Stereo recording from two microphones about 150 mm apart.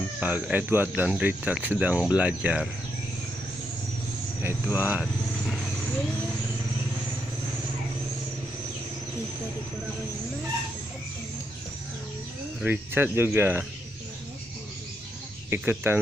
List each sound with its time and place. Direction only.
0.2 s speech: 10° right (ahead or behind)
4.4 s speech: 15° right (ahead or behind)
12.6 s speech: 15° right (ahead or behind)
15.5 s speech: 15° right (ahead or behind)